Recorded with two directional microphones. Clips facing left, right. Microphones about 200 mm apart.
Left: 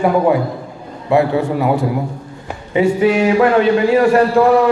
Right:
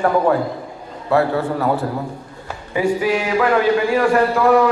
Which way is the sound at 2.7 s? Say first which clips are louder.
Left 5 dB; 25° left (ahead or behind).